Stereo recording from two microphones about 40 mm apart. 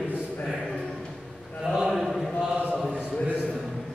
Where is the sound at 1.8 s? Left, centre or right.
Centre.